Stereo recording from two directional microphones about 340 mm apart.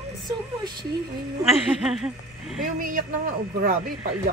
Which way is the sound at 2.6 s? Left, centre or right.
Right.